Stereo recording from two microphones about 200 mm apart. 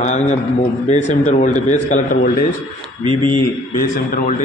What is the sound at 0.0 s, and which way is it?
A man's voice, 35° left (ahead or behind).